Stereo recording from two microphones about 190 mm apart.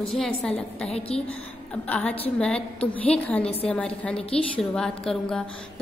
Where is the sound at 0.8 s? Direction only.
35° left (ahead or behind).